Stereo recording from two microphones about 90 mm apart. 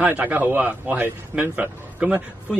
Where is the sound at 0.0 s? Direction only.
20° right (ahead or behind).